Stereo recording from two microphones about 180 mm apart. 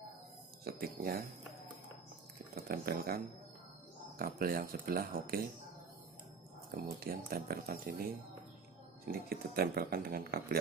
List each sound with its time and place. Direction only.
0.7 s speech: 55° right (ahead or behind)
2.5 s speech: 55° right (ahead or behind)
4.2 s speech: 50° right (ahead or behind)
6.7 s speech: 55° right (ahead or behind)